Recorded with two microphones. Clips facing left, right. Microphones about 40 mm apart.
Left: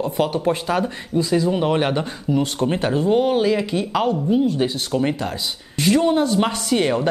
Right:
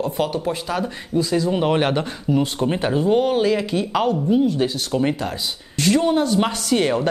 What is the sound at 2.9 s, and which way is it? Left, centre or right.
Speech, centre.